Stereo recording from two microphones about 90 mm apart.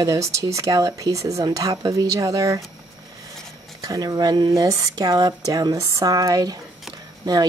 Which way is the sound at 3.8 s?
40° right (ahead or behind).